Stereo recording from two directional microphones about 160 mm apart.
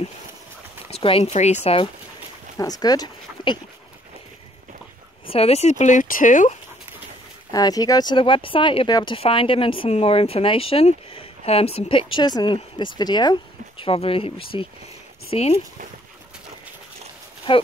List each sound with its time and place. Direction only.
0.8 s speech: 40° left (ahead or behind)
2.5 s speech: 25° left (ahead or behind)
5.3 s speech: 40° left (ahead or behind)
7.5 s speech: 25° left (ahead or behind); by 15.5 s 40° left (ahead or behind)
17.5 s speech: 30° left (ahead or behind)